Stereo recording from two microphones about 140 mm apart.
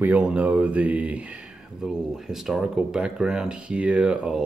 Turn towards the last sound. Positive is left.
turn(degrees=-5)  # may be behind; listen again after turning